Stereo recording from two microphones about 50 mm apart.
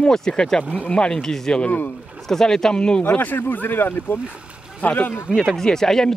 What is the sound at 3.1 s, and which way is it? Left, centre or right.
Speech, left.